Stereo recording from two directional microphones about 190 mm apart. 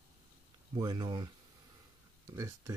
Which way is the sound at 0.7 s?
25° right (ahead or behind).